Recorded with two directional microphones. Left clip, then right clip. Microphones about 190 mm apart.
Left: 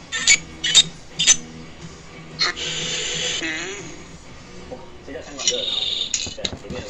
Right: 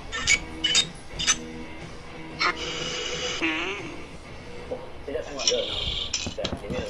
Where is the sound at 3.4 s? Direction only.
15° right (ahead or behind).